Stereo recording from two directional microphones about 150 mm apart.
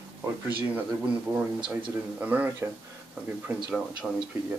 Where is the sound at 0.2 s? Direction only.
10° right (ahead or behind).